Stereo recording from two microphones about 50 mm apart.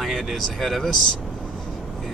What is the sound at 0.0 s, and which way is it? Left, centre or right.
Speech, centre.